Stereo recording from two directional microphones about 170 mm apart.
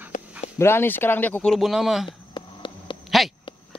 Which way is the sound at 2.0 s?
30° left (ahead or behind).